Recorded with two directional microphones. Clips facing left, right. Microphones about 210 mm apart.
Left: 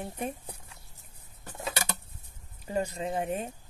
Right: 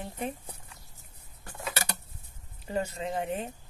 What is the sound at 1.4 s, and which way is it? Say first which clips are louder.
Scissors: left 2 dB; 20° left (ahead or behind).